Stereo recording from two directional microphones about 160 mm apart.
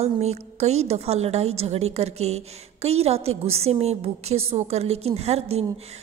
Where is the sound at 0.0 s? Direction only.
45° right (ahead or behind).